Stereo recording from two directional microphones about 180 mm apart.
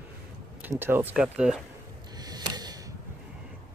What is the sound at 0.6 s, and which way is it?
Speech, 10° right (ahead or behind).